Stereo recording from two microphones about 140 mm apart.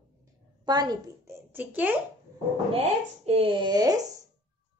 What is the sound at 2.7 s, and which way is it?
Speech, 45° right (ahead or behind).